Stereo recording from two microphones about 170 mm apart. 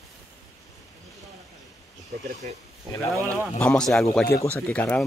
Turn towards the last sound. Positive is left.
turn(degrees=5)  # may be behind; listen again after turning